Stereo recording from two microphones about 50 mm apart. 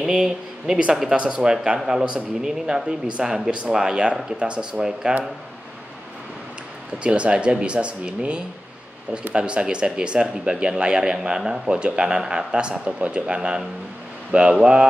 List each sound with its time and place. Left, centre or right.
0.0 s speech: centre
7.0 s speech: right